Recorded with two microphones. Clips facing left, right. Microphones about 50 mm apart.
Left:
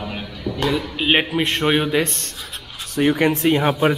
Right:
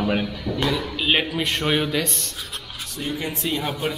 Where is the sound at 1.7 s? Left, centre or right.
Centre.